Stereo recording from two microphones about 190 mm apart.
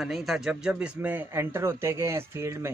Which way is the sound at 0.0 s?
Centre (ahead or behind).